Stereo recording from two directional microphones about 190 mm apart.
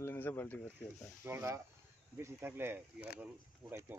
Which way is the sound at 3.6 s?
Centre (ahead or behind).